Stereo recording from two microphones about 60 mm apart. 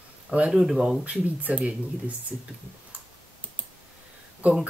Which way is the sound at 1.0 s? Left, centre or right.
Right.